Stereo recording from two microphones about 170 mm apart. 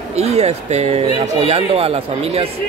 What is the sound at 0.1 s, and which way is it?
Speech, 40° right (ahead or behind).